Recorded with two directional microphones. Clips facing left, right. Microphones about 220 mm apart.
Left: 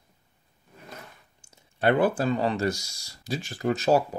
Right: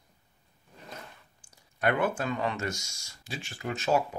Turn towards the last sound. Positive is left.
turn(degrees=40)  # may be behind; listen again after turning